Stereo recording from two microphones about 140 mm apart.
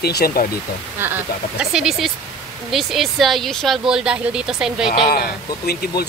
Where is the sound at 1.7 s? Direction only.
Centre (ahead or behind).